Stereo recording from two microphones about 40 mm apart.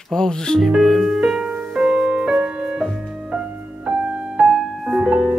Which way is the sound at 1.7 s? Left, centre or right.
Right.